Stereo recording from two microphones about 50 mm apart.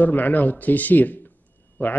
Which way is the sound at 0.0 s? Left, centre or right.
Left.